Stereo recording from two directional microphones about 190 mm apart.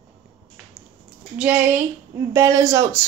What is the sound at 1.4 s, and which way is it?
Speech, 10° right (ahead or behind).